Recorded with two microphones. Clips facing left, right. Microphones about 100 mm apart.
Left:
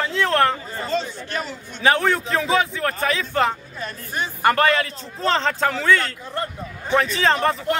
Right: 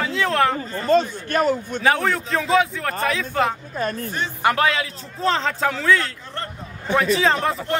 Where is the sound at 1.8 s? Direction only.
Centre (ahead or behind).